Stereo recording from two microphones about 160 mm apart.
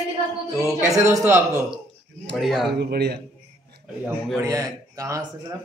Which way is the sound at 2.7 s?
90° right.